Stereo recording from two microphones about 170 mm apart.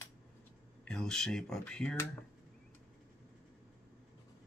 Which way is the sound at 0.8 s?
5° left (ahead or behind).